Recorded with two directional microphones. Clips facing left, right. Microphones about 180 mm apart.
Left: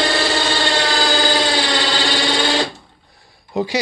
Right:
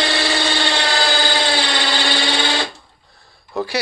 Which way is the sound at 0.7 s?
45° left (ahead or behind).